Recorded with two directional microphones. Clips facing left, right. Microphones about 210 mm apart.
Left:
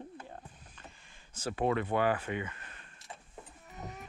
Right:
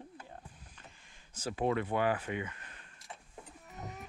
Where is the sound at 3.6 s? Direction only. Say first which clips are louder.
Left 1 dB; centre (ahead or behind).